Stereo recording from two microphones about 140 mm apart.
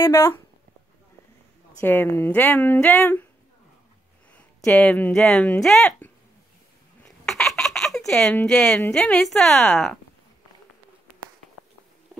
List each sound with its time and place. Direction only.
0.0 s speech: 20° left (ahead or behind)
1.8 s speech: 15° left (ahead or behind)
4.6 s speech: 10° left (ahead or behind)
7.1 s a sound: 5° left (ahead or behind)
8.8 s a woman's voice: 5° left (ahead or behind)